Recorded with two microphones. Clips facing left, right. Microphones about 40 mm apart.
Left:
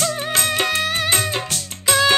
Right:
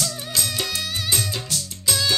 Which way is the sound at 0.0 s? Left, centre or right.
Left.